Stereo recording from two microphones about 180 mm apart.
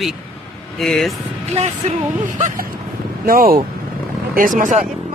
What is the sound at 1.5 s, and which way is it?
Speech, 40° right (ahead or behind).